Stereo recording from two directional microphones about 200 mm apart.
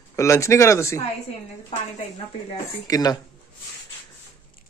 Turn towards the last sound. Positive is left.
turn(degrees=20)  # may be behind; listen again after turning